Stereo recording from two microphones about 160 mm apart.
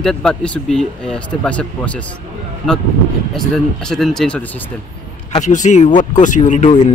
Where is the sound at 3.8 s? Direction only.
Centre (ahead or behind).